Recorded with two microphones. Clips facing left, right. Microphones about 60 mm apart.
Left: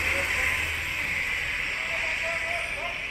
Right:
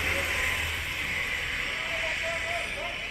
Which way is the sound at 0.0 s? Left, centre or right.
Left.